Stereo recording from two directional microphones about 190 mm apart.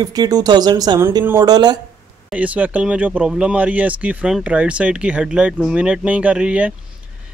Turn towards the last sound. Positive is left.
turn(degrees=-5)  # may be behind; listen again after turning